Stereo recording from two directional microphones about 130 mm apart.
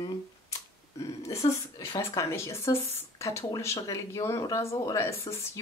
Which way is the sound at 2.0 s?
20° left (ahead or behind).